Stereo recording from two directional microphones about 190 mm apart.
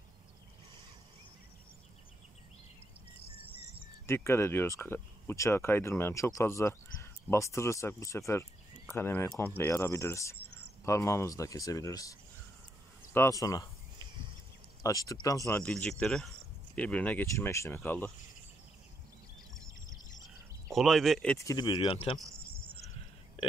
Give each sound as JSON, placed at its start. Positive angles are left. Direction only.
{"t": 4.0, "sound": "speech", "side_deg": 15}
{"t": 14.8, "sound": "speech", "side_deg": 15}
{"t": 15.7, "sound": "speech", "side_deg": 5}
{"t": 20.7, "sound": "speech", "side_deg": 0}
{"t": 21.4, "sound": "speech", "side_deg": 20}